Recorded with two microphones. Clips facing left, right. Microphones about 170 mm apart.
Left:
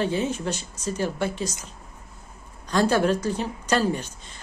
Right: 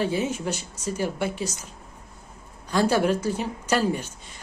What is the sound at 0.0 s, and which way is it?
A woman's voice, 10° right (ahead or behind).